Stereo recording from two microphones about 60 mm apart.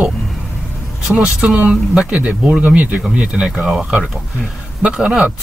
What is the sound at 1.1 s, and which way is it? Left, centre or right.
Speech, centre.